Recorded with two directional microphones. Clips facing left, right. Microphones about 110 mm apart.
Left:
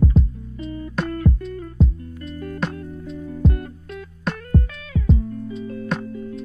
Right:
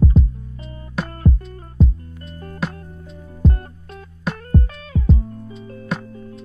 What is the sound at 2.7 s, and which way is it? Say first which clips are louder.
Music: left 7 dB; 30° right (ahead or behind).